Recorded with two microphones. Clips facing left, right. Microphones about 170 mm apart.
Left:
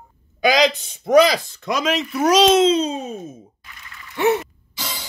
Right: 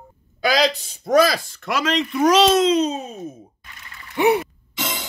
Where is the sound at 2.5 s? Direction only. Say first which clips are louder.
Left 1 dB; 30° left (ahead or behind).